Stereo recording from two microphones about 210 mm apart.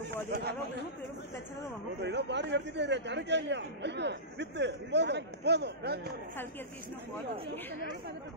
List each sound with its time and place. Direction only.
0.0 s speech: 50° right (ahead or behind)
2.0 s a man's voice: 55° right (ahead or behind)